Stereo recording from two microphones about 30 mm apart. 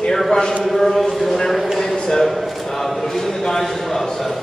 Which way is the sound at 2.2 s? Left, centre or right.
Centre.